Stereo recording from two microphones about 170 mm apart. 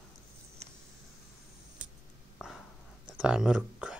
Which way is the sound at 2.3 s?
Centre (ahead or behind).